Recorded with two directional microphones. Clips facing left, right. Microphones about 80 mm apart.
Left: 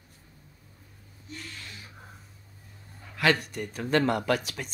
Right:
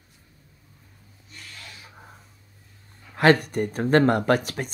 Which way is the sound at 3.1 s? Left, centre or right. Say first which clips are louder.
Right 7 dB; right.